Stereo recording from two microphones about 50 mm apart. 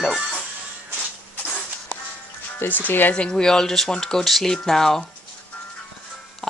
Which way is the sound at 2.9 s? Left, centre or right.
Left.